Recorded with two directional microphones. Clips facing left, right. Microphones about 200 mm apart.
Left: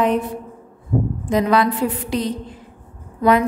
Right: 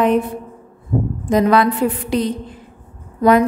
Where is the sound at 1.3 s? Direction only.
50° right (ahead or behind).